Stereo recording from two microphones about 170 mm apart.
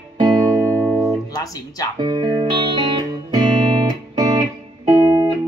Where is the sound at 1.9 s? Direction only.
25° right (ahead or behind).